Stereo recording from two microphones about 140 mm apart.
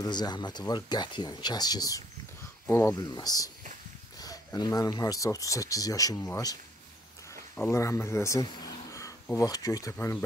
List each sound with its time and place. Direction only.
0.0 s speech: 30° left (ahead or behind)